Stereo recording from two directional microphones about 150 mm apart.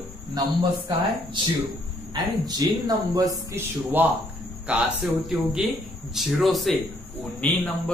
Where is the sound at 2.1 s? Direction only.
25° right (ahead or behind).